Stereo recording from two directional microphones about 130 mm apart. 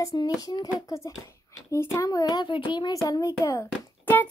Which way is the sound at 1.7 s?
25° left (ahead or behind).